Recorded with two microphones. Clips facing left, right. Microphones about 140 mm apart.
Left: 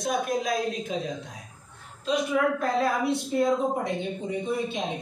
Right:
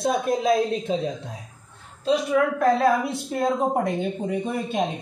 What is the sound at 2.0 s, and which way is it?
Speech, 35° right (ahead or behind).